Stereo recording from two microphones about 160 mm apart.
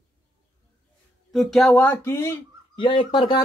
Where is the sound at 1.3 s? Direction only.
Centre (ahead or behind).